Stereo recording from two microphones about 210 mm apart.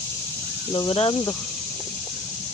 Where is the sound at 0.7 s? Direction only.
25° left (ahead or behind).